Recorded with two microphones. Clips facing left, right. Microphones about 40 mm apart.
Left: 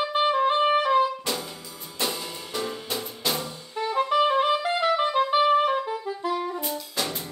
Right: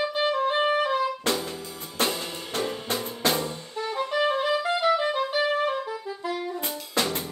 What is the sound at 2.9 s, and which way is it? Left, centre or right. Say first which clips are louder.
Music: right 4 dB; right.